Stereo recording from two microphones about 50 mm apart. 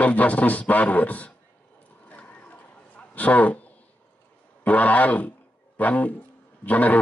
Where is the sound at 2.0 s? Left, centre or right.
Left.